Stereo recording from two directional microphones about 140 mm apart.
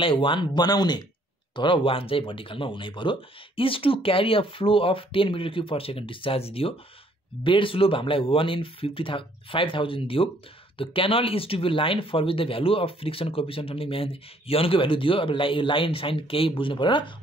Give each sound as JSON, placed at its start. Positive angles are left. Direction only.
{"t": 0.0, "sound": "speech", "side_deg": 40}